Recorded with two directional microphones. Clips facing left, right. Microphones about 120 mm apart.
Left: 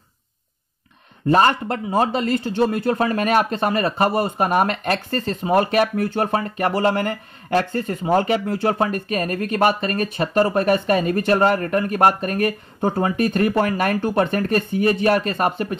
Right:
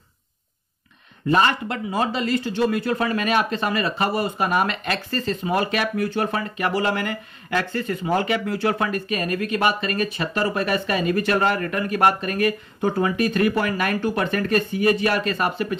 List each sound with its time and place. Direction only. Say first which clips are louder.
1.3 s speech: left 3 dB; 40° left (ahead or behind)